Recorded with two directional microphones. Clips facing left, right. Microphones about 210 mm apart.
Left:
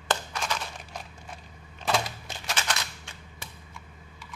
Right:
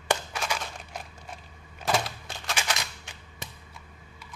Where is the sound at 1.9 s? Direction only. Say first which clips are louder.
Even; centre (ahead or behind).